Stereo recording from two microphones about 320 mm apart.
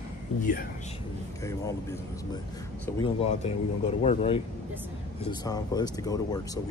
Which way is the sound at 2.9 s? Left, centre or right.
Centre.